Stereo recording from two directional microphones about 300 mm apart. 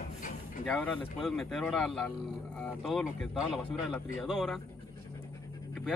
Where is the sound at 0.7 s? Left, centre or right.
Centre.